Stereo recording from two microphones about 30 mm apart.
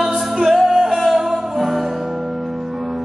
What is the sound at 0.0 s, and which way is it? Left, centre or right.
Music, centre.